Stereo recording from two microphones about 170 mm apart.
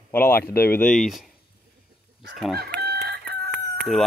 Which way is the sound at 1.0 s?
Centre (ahead or behind).